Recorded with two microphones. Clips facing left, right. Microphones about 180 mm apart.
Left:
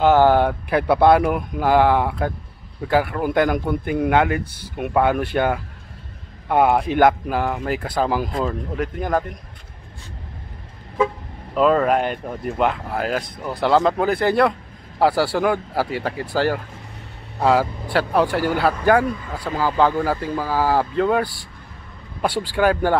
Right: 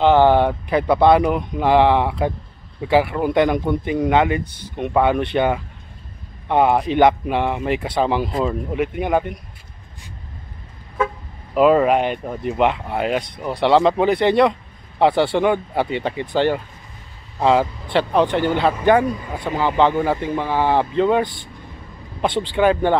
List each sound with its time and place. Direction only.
0.0 s a man's voice: 5° left (ahead or behind)
11.5 s a man's voice: 5° right (ahead or behind)
19.0 s speech: 20° right (ahead or behind)
20.5 s a man's voice: 5° left (ahead or behind)